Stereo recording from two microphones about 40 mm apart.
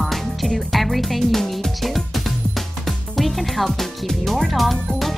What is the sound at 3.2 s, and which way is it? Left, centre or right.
Speech, centre.